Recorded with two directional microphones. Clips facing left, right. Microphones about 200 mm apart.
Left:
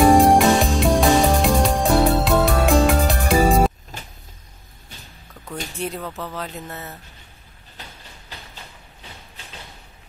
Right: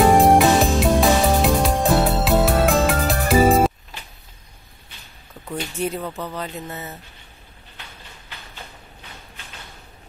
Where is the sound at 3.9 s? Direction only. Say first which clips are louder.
Left 3 dB; 45° left (ahead or behind).